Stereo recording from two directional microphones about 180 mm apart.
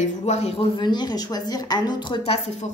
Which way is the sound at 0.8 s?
25° left (ahead or behind).